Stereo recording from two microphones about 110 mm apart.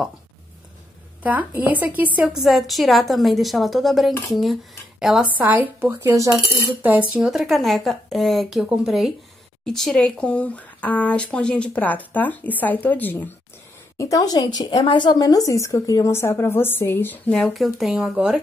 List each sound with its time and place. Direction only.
1.2 s a woman's voice: 15° right (ahead or behind)
5.4 s a woman's voice: 15° right (ahead or behind); by 13.3 s 15° left (ahead or behind)
13.9 s speech: 30° left (ahead or behind)
17.3 s a woman's voice: centre (ahead or behind)